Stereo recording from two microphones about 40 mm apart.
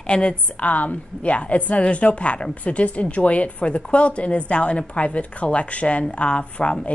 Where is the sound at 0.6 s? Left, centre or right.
Left.